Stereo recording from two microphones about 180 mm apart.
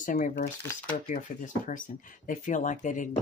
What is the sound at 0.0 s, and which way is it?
Speech, 45° left (ahead or behind).